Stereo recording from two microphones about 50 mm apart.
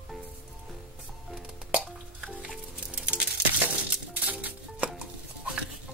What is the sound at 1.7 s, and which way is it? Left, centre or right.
Music, right.